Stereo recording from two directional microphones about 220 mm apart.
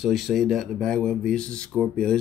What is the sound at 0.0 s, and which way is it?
Speech, centre (ahead or behind).